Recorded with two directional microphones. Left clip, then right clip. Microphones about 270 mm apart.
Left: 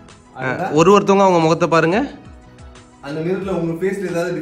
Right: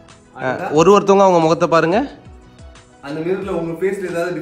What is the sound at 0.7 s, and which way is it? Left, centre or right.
Speech, centre.